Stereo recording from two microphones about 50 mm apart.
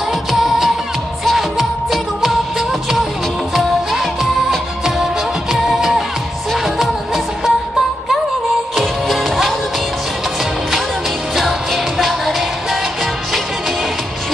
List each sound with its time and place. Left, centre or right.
0.1 s music: centre
8.7 s music: centre
11.3 s music: centre